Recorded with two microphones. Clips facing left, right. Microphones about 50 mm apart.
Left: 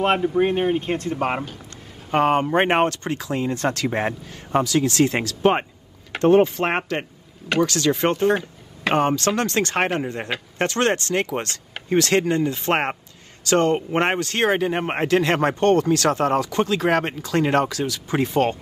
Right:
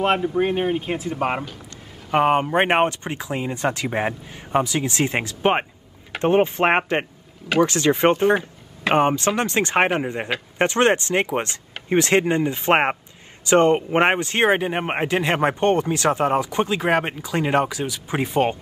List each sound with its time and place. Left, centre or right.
0.0 s speech: centre